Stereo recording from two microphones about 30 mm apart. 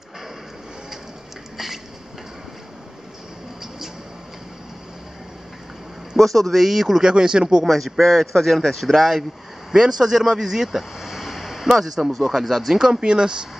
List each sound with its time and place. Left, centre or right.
6.1 s a man's voice: centre
6.6 s speech: centre
7.0 s speech: right
7.6 s a man's voice: centre
9.7 s speech: centre